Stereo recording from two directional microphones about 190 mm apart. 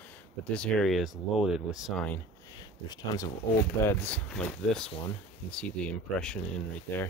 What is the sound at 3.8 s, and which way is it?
Speech, 10° left (ahead or behind).